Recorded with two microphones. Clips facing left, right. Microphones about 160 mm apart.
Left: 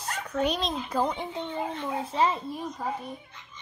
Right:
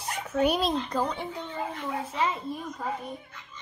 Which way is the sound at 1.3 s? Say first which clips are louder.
Left 2 dB; 25° left (ahead or behind).